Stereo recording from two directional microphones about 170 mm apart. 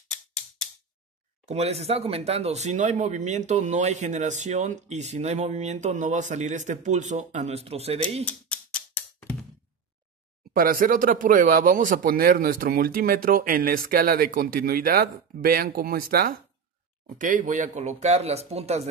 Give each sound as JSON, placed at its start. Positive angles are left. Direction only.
{"t": 1.4, "sound": "speech", "side_deg": -40}
{"t": 8.3, "sound": "a sound", "side_deg": 5}
{"t": 10.5, "sound": "speech", "side_deg": -55}